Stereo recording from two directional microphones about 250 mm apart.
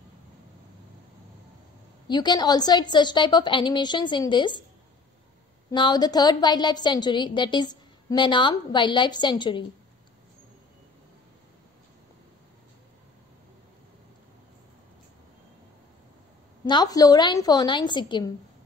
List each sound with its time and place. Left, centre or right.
2.0 s a woman's voice: centre
5.7 s a woman's voice: centre
16.6 s a woman's voice: centre